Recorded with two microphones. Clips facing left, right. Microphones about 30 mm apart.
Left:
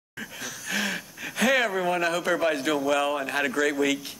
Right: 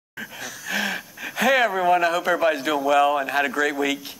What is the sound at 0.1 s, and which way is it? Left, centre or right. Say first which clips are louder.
Speech: right 2 dB; centre.